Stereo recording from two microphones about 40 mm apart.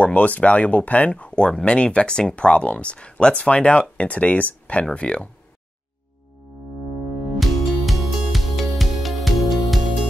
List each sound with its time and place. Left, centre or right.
0.0 s speech: left
7.3 s music: centre